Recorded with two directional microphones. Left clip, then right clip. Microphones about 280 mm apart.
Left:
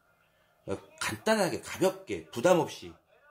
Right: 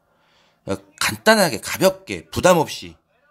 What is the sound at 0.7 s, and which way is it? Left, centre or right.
Speech, right.